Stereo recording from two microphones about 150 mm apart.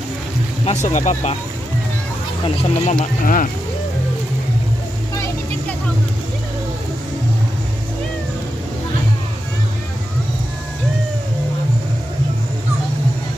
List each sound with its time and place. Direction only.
0.8 s speech: 55° left (ahead or behind)
2.4 s speech: 40° left (ahead or behind)
3.0 s speech: 65° left (ahead or behind)